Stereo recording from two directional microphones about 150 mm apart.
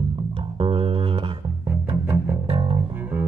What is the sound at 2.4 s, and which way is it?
Music, 35° right (ahead or behind).